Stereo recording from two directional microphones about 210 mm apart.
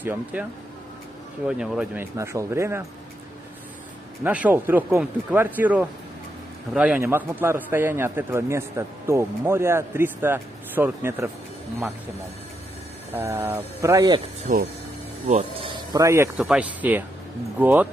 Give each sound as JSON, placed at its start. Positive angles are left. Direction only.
{"t": 0.0, "sound": "a man's voice", "side_deg": -10}
{"t": 1.5, "sound": "a man's voice", "side_deg": -5}
{"t": 4.2, "sound": "a man's voice", "side_deg": -5}
{"t": 13.1, "sound": "a man's voice", "side_deg": -10}
{"t": 14.4, "sound": "speech", "side_deg": -45}
{"t": 15.2, "sound": "speech", "side_deg": -30}
{"t": 15.9, "sound": "a man's voice", "side_deg": -15}